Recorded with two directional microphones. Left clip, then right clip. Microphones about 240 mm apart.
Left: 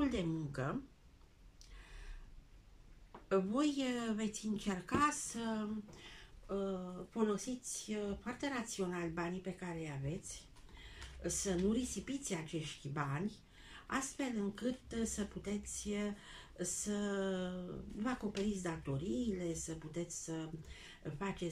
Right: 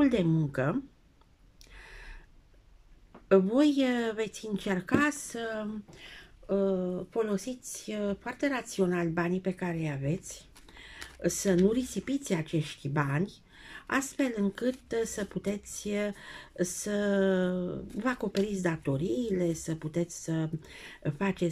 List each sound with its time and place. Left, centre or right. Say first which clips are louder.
0.0 s speech: right 11 dB; right
1.8 s gasp: right 11 dB; right
3.3 s speech: right 11 dB; right